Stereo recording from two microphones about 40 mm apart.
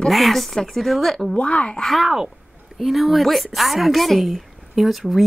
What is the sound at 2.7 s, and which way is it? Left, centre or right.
Speech, centre.